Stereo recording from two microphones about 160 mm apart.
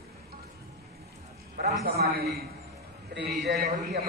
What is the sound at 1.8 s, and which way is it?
Speech, 75° right (ahead or behind).